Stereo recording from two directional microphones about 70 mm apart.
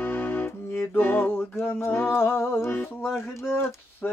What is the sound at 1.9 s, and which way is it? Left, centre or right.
Humming, left.